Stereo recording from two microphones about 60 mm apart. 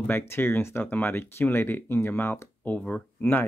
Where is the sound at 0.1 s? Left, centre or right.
Left.